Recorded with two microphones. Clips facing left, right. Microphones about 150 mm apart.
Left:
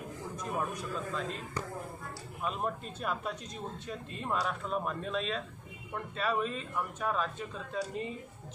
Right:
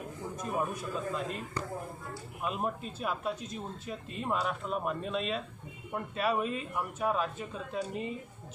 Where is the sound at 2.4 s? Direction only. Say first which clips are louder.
Right 1 dB; 5° right (ahead or behind).